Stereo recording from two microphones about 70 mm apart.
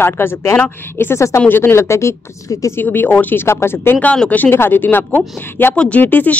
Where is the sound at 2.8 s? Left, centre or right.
Left.